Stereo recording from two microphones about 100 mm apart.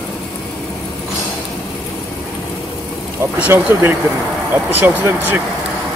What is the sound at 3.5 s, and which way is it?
Speech, 25° right (ahead or behind).